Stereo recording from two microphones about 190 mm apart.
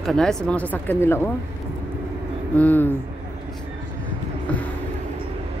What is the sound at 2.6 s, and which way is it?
Speech, 10° left (ahead or behind).